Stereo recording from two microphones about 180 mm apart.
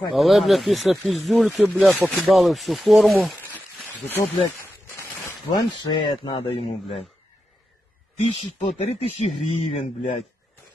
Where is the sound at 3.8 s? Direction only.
10° left (ahead or behind); by 7.0 s 35° left (ahead or behind).